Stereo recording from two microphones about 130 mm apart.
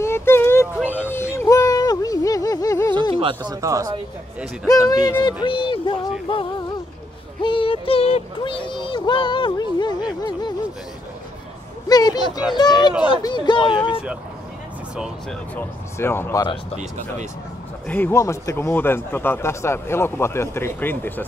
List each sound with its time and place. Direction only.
0.0 s a sound: 20° left (ahead or behind)
3.2 s speech: 40° right (ahead or behind)
3.6 s speech: 25° right (ahead or behind)
4.6 s speech: 30° left (ahead or behind)
5.2 s child singing: 40° left (ahead or behind)
7.4 s child singing: 45° left (ahead or behind)
11.9 s child singing: 30° left (ahead or behind)
15.5 s speech: 20° left (ahead or behind)
17.8 s speech: 15° left (ahead or behind)